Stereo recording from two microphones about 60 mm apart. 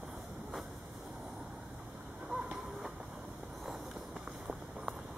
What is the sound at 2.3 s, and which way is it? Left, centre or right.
Train, centre.